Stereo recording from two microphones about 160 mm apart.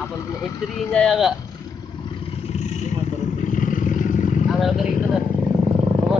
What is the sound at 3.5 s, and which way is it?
Vehicle, 55° left (ahead or behind).